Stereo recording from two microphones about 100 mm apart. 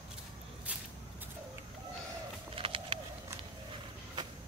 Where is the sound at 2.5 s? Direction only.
65° right (ahead or behind).